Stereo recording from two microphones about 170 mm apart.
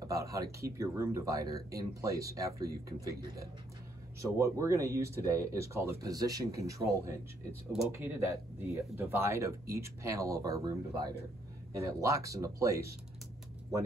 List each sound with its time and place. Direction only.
0.0 s speech: 20° right (ahead or behind)